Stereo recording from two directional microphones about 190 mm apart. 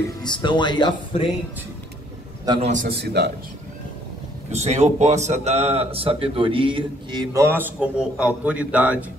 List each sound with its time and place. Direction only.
0.2 s speech: 25° left (ahead or behind)
2.6 s a man's voice: 40° right (ahead or behind)
2.9 s a man's voice: 60° right (ahead or behind)
4.5 s a man's voice: 35° right (ahead or behind); by 9.0 s 5° right (ahead or behind)